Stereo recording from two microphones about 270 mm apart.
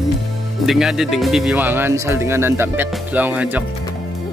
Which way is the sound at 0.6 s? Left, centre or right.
Centre.